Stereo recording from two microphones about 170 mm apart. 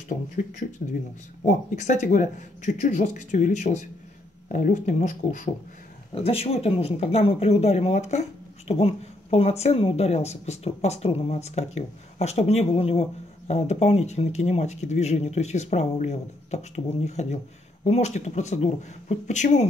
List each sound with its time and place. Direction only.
0.1 s speech: 50° left (ahead or behind)
6.1 s speech: 35° left (ahead or behind)